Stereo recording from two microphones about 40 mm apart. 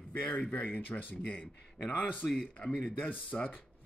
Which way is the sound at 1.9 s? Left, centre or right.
Left.